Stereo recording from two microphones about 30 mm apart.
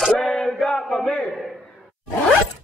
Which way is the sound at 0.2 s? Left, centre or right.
Centre.